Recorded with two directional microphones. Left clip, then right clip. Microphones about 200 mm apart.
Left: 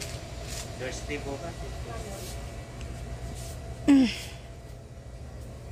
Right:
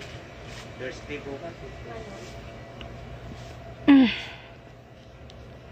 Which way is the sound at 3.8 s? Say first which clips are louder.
Right 4 dB; 5° right (ahead or behind).